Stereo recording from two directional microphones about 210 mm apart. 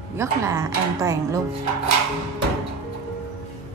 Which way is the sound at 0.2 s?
15° right (ahead or behind).